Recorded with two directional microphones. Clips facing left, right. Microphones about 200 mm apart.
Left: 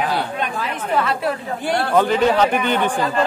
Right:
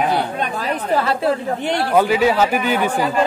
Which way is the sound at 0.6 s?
35° right (ahead or behind).